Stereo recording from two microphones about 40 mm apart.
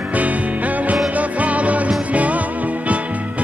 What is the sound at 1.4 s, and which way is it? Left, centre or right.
Music, right.